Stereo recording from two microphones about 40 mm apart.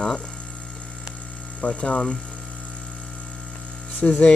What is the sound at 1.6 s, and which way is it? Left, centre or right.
Speech, left.